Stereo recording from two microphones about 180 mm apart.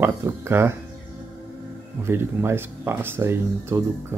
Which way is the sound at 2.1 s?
15° right (ahead or behind).